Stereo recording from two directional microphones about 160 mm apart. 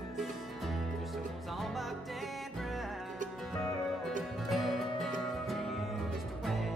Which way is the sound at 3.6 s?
Centre (ahead or behind).